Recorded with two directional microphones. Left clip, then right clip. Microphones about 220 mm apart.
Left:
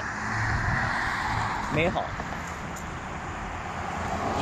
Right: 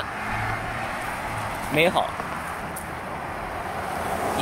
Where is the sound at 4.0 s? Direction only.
40° right (ahead or behind).